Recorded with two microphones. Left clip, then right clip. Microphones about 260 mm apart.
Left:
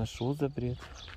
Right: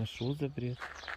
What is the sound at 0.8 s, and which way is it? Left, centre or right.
Speech, centre.